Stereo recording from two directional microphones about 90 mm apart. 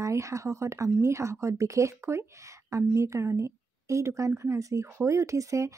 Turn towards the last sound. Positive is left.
turn(degrees=-35)  # may be behind; listen again after turning